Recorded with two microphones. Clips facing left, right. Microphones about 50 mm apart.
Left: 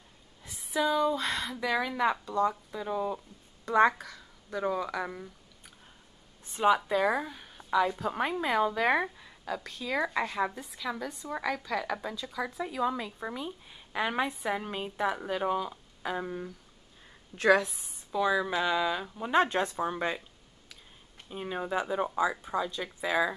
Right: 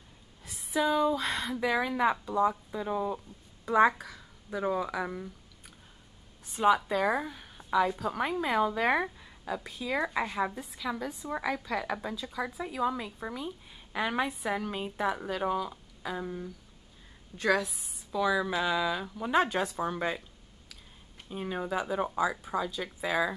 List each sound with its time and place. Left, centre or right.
0.5 s speech: centre
6.6 s a woman's voice: centre
8.0 s a woman's voice: centre
16.1 s speech: left
17.5 s a woman's voice: left
18.1 s speech: centre
21.3 s a woman's voice: centre